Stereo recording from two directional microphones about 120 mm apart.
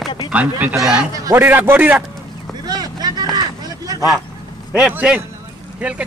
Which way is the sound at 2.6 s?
35° right (ahead or behind).